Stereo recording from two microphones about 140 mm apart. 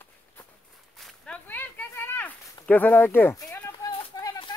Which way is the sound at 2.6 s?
10° left (ahead or behind).